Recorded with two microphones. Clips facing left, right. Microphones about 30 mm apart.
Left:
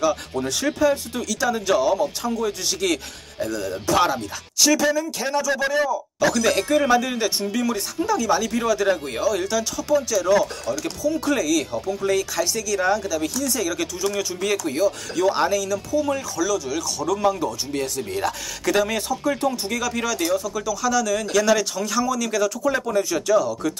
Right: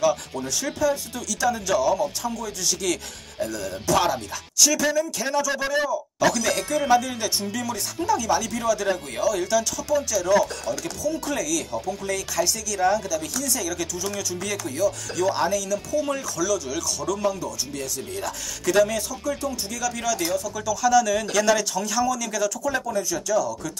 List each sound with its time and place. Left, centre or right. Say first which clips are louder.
0.0 s speech: even; centre
0.7 s speech: left 4 dB; left; by 4.2 s centre
4.6 s speech: left 3 dB; left
4.8 s speech: left 2 dB; centre
6.4 s speech: left 5 dB; centre
11.1 s speech: left 5 dB; left
15.5 s speech: left 2 dB; centre
17.4 s speech: left 5 dB; left
18.7 s speech: right 1 dB; centre
18.9 s speech: left 4 dB; left
19.9 s speech: left 2 dB; left
20.5 s speech: right 2 dB; centre
22.6 s speech: left 4 dB; left